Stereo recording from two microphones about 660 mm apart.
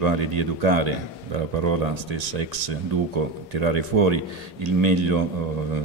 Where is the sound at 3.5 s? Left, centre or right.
Right.